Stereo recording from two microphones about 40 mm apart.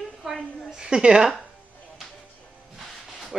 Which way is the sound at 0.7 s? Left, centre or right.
Centre.